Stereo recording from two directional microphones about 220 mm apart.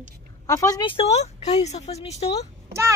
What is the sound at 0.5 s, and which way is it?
A woman's voice, 15° left (ahead or behind).